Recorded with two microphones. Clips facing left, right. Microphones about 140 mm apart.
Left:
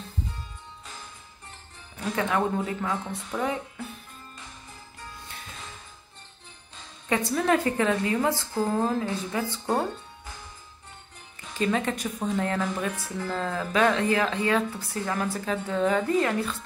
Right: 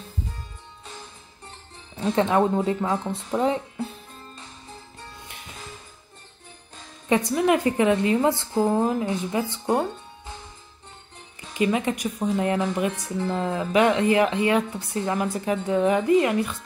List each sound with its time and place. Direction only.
2.0 s speech: 30° right (ahead or behind)
7.1 s speech: 15° right (ahead or behind)
11.5 s speech: 15° right (ahead or behind)